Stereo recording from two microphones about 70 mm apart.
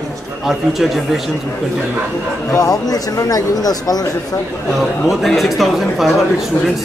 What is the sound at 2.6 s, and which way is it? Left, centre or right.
Speech, left.